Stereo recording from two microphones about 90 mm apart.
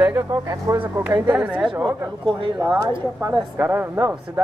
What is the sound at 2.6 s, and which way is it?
Speech, 35° right (ahead or behind).